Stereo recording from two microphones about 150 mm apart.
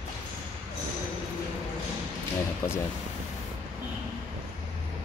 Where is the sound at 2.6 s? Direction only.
20° left (ahead or behind).